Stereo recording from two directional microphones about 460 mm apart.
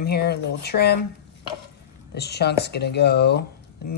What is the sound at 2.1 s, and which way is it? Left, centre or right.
Speech, left.